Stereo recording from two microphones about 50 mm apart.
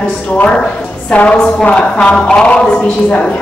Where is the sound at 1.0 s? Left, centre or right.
Left.